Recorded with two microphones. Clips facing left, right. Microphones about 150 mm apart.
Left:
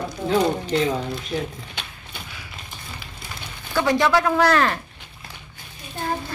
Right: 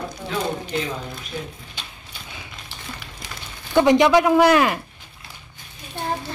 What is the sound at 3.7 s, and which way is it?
Speech, 20° right (ahead or behind).